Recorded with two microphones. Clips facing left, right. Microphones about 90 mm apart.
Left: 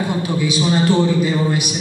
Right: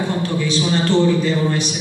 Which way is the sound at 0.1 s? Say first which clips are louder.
Left 1 dB; 10° left (ahead or behind).